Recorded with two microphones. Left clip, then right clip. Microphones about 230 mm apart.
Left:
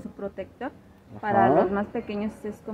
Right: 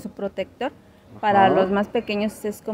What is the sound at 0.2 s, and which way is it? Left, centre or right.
A woman's voice, right.